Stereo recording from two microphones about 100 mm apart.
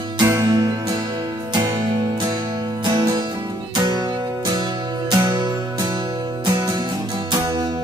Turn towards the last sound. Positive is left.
turn(degrees=-45)  # may be behind; listen again after turning